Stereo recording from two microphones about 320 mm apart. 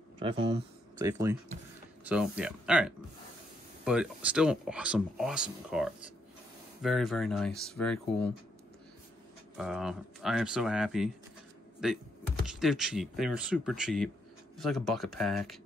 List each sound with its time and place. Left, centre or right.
0.2 s speech: centre
9.6 s speech: centre